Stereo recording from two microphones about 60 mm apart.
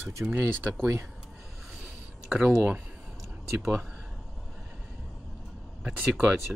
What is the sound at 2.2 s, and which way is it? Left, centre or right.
Speech, centre.